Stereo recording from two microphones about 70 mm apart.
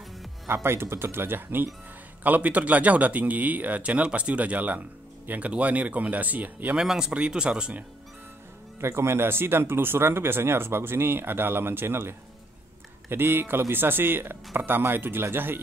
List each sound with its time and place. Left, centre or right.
0.5 s speech: right
6.8 s speech: centre
8.8 s speech: right